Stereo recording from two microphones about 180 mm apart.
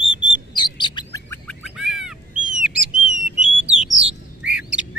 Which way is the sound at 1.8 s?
Centre (ahead or behind).